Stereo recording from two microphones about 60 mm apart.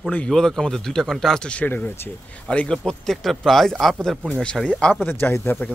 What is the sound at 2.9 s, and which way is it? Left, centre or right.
Speech, centre.